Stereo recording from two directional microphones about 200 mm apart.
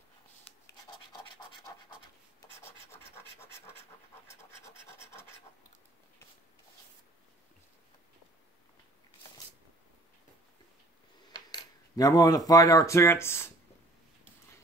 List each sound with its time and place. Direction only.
2.6 s scratch: 10° left (ahead or behind)
11.3 s coin: 20° left (ahead or behind)